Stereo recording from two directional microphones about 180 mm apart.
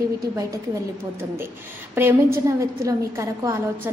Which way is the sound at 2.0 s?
15° right (ahead or behind).